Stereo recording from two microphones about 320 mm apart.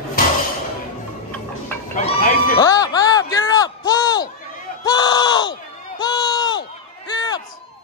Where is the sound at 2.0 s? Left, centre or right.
Left.